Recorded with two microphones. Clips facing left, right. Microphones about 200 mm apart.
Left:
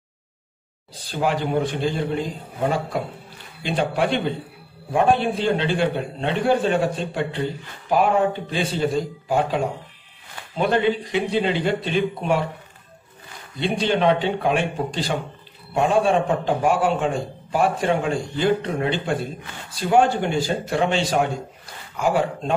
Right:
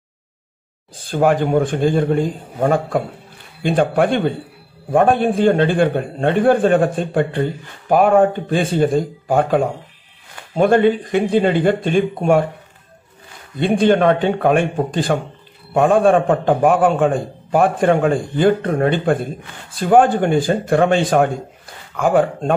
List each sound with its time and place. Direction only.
0.9 s a man's voice: 50° right (ahead or behind)
13.6 s a man's voice: 50° right (ahead or behind)